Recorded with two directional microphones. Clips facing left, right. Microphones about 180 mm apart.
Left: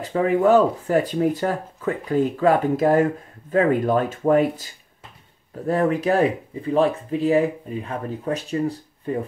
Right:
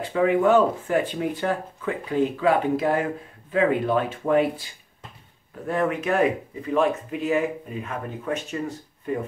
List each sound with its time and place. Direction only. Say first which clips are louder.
0.0 s speech: left 1 dB; 40° left (ahead or behind)
5.7 s speech: left 4 dB; 35° left (ahead or behind)